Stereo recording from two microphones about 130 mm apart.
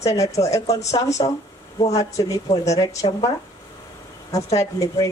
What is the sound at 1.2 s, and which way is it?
Speech, 45° left (ahead or behind).